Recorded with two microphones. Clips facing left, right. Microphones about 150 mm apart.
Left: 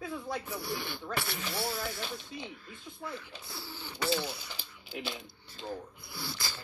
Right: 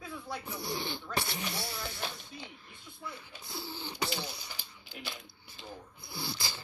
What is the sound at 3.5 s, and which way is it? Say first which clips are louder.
Speech: right 4 dB; 20° right (ahead or behind).